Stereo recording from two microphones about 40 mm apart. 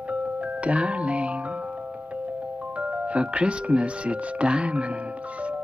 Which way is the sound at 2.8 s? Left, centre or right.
Right.